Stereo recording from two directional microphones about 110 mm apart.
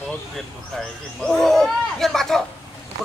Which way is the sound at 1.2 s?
5° left (ahead or behind).